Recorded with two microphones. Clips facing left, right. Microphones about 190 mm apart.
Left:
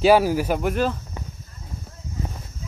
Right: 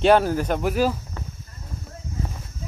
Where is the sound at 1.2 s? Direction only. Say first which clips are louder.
Even; 15° left (ahead or behind).